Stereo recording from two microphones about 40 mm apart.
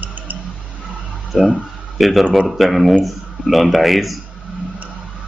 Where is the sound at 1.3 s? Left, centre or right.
Centre.